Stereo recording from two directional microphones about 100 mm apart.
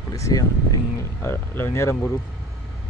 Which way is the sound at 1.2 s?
20° left (ahead or behind).